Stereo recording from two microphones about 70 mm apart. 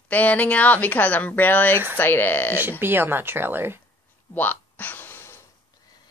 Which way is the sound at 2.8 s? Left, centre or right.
Right.